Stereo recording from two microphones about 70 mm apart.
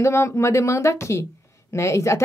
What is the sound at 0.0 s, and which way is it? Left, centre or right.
Speech, left.